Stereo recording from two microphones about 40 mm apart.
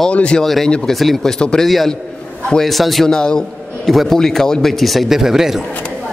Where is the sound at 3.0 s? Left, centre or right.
Centre.